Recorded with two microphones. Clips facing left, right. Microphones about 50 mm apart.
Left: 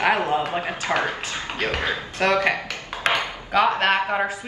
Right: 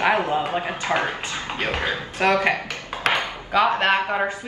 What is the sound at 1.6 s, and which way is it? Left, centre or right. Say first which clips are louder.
Speech: even; centre.